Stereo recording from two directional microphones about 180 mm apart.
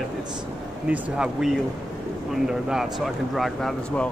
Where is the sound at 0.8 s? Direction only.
5° right (ahead or behind).